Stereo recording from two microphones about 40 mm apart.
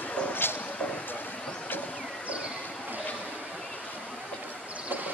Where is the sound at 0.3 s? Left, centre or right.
Left.